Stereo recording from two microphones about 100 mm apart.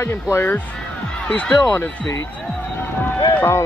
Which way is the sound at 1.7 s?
20° left (ahead or behind).